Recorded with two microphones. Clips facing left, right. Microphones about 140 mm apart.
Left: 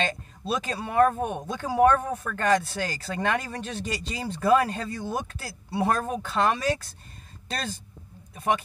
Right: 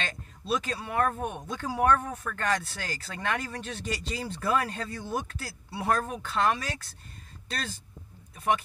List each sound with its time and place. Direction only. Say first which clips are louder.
0.0 s speech: left 8 dB; 20° left (ahead or behind)
2.3 s speech: left 7 dB; 20° left (ahead or behind)